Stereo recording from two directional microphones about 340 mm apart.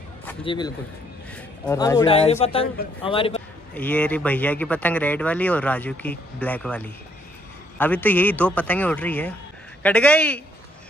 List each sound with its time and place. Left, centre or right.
0.5 s a man's voice: centre
3.7 s speech: centre